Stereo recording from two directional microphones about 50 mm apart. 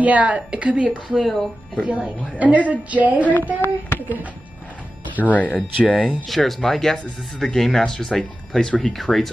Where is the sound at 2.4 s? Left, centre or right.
Right.